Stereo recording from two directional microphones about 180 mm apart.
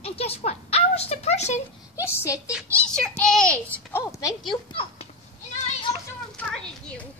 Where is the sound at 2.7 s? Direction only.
5° left (ahead or behind).